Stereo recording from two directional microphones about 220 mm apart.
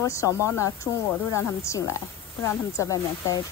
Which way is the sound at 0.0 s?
15° left (ahead or behind).